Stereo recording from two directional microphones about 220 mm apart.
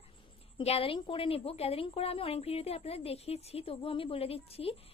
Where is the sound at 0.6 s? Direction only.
25° left (ahead or behind).